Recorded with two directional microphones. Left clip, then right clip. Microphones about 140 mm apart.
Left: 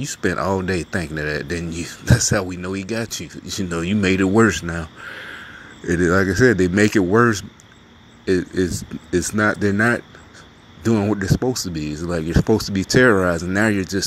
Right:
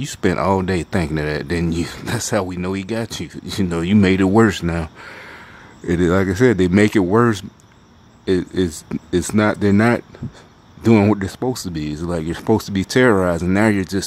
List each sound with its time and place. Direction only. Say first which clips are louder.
0.0 s speech: right 3 dB; 20° right (ahead or behind)